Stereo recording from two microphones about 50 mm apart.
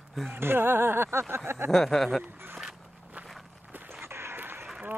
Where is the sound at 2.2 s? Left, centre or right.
Right.